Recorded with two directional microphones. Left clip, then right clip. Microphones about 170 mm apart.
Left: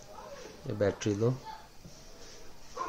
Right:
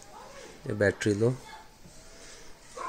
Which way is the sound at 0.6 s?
55° right (ahead or behind).